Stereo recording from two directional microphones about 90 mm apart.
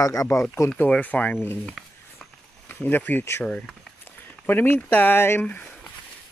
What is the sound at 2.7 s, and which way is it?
Speech, 20° left (ahead or behind).